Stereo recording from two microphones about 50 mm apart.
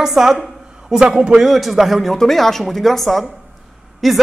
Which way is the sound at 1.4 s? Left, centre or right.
Centre.